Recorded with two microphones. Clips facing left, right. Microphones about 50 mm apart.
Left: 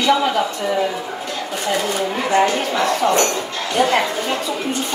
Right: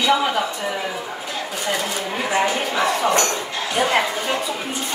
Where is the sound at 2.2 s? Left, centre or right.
Centre.